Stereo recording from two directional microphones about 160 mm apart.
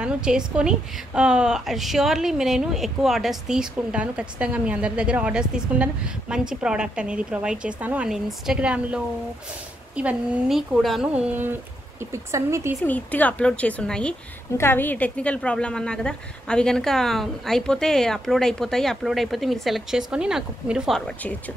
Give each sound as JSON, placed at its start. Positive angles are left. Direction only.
{"t": 0.0, "sound": "a woman's voice", "side_deg": -5}
{"t": 12.8, "sound": "a woman's voice", "side_deg": 10}